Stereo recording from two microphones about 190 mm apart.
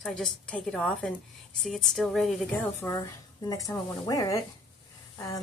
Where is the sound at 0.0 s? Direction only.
5° left (ahead or behind).